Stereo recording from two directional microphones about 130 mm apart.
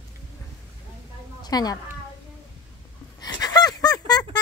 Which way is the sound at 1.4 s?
30° left (ahead or behind).